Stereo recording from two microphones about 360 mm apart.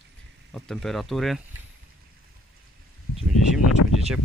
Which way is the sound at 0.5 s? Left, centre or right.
Centre.